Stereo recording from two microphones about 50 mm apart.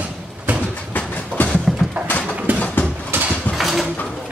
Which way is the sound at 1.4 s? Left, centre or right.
Left.